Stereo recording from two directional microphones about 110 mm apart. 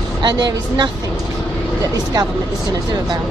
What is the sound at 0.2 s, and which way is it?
Speech, 40° right (ahead or behind).